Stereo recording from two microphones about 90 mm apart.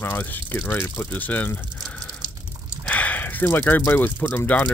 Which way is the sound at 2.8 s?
15° left (ahead or behind).